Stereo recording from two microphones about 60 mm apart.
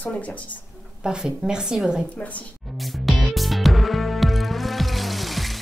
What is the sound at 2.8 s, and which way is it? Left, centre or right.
Music, centre.